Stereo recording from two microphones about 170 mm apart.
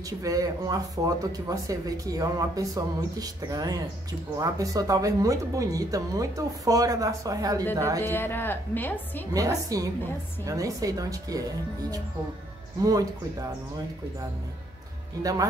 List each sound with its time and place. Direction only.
0.2 s a woman's voice: 20° right (ahead or behind)
8.0 s a woman's voice: 15° left (ahead or behind)
9.3 s speech: 20° right (ahead or behind)